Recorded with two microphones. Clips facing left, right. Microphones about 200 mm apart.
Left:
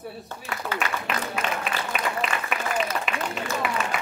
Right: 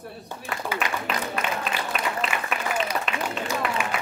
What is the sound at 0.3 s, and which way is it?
Speech, 15° right (ahead or behind).